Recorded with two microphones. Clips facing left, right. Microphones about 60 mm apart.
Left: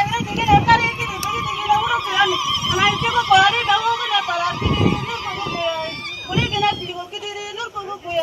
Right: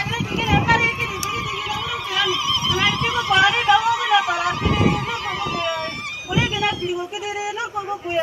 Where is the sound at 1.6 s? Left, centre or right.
Centre.